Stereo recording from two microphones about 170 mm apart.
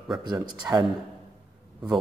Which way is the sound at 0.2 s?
25° right (ahead or behind).